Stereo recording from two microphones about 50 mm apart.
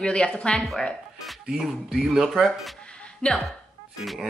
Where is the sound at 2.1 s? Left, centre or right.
Centre.